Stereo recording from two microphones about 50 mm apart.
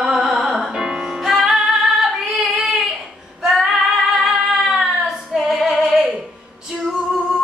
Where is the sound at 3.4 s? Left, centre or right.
Centre.